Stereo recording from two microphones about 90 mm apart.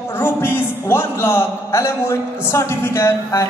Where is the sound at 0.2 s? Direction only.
25° left (ahead or behind).